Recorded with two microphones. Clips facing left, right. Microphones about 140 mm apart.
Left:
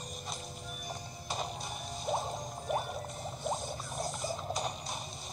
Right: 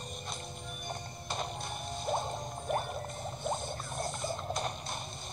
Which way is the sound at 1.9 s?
Centre (ahead or behind).